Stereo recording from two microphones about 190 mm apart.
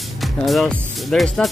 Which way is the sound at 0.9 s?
Centre (ahead or behind).